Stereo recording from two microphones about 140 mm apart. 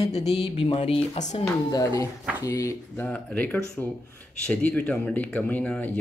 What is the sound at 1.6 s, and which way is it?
Speech, 25° left (ahead or behind).